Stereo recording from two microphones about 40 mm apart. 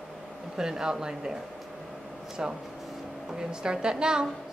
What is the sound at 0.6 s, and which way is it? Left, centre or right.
Speech, centre.